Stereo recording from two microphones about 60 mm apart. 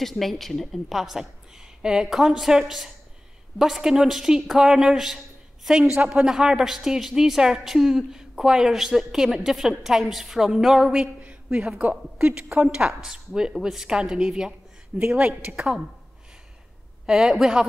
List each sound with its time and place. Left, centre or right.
0.0 s a woman's voice: centre
11.1 s a sound: right
12.5 s a woman's voice: centre
17.0 s a woman's voice: centre